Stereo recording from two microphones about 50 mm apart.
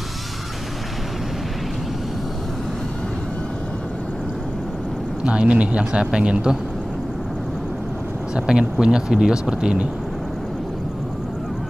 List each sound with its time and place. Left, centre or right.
5.2 s speech: right
8.4 s speech: centre